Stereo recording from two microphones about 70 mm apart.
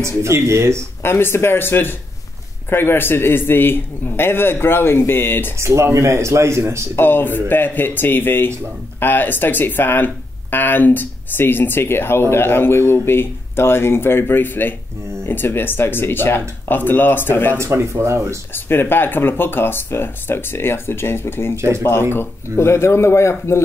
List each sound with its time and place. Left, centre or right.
0.0 s a man's voice: right
1.0 s speech: left
5.6 s a man's voice: right
7.0 s speech: left
17.6 s speech: right
18.5 s speech: left